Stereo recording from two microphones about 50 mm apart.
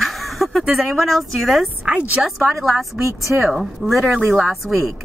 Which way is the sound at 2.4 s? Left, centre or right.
Centre.